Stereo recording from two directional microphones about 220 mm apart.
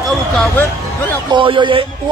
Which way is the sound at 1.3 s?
20° right (ahead or behind).